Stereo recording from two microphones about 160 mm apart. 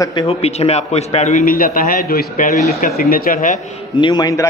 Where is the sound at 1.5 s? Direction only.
60° left (ahead or behind).